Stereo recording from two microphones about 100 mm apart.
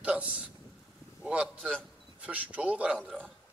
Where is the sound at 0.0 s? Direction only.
10° right (ahead or behind).